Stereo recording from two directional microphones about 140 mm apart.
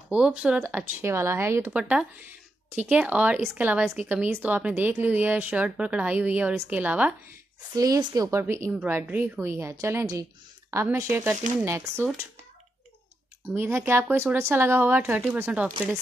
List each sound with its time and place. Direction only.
0.1 s a woman's voice: 5° right (ahead or behind)
1.7 s a woman's voice: 10° right (ahead or behind)
7.7 s a woman's voice: 25° right (ahead or behind)
13.6 s a woman's voice: 15° right (ahead or behind)